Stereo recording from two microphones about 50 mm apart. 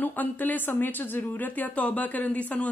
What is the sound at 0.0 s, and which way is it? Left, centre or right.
A woman's voice, left.